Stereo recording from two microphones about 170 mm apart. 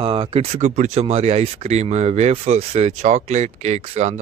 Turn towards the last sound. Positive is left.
turn(degrees=-40)  # may be behind; listen again after turning